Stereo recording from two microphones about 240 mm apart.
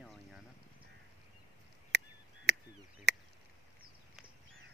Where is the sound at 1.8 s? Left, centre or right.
Right.